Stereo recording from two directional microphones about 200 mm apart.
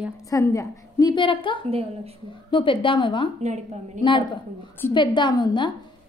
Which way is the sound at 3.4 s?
35° right (ahead or behind).